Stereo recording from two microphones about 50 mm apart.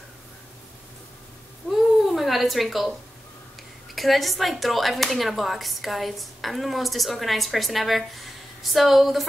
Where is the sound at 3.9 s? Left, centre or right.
Centre.